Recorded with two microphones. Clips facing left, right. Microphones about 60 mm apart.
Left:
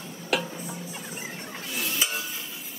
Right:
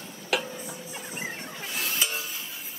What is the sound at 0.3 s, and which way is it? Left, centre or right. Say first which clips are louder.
Music: left 1 dB; centre.